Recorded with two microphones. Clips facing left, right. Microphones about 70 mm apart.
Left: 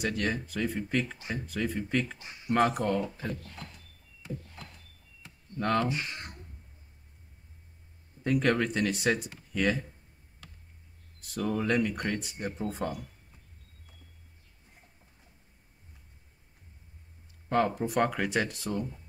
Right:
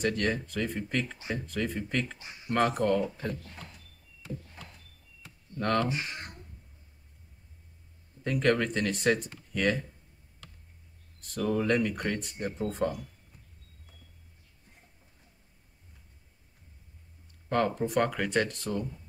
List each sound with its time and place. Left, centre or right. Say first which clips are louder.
0.0 s speech: right 2 dB; centre
5.6 s speech: even; centre
5.9 s speech: even; right
8.2 s speech: even; centre
11.1 s speech: right 2 dB; centre
17.5 s speech: even; centre